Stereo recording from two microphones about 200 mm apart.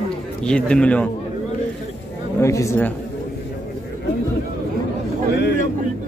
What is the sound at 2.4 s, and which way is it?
Speech, 15° left (ahead or behind).